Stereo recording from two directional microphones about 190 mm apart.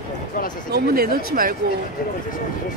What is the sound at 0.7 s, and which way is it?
Speech, 55° right (ahead or behind).